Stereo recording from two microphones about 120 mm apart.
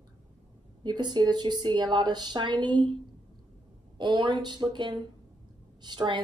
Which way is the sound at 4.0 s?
40° right (ahead or behind).